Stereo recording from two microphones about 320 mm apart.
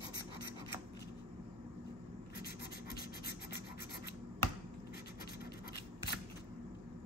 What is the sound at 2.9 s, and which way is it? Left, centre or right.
Scratch, left.